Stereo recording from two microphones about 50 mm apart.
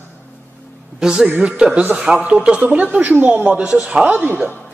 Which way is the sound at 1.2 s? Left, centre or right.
Right.